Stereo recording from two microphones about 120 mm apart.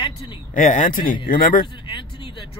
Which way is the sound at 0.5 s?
90° left.